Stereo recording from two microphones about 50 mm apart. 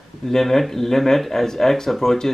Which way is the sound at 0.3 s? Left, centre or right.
Centre.